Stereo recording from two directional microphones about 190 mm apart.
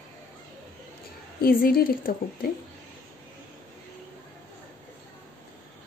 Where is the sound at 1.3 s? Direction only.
50° left (ahead or behind).